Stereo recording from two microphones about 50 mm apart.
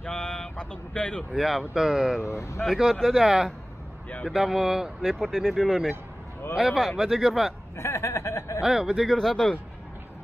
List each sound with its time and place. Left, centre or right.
0.0 s a sound: centre
1.3 s speech: centre
2.2 s speech: left
2.8 s speech: centre
5.0 s speech: centre
6.5 s speech: centre
7.7 s speech: left
8.6 s speech: centre
9.1 s speech: centre